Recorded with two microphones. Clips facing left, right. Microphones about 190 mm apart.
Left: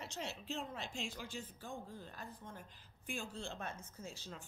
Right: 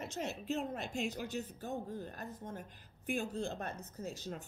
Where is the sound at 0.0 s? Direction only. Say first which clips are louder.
Right 5 dB; 50° right (ahead or behind).